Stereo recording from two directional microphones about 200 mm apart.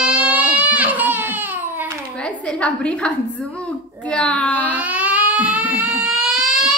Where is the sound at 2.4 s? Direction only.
5° left (ahead or behind).